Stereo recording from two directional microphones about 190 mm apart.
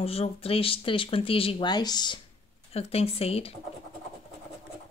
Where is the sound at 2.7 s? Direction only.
30° left (ahead or behind).